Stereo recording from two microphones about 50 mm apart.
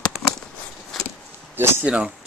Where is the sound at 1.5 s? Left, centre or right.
Right.